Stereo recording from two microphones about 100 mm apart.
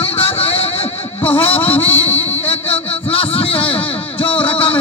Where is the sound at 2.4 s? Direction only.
70° left (ahead or behind).